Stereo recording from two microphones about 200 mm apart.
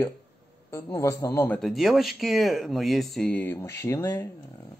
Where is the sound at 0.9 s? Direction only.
15° left (ahead or behind).